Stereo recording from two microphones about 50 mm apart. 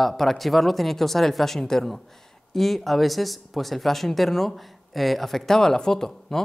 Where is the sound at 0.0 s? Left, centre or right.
Centre.